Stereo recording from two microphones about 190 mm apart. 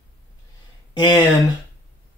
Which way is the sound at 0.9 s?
25° left (ahead or behind).